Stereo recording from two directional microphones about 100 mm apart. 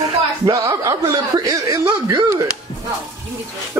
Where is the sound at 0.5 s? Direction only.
35° right (ahead or behind).